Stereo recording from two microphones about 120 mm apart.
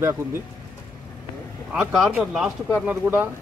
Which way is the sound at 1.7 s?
5° right (ahead or behind).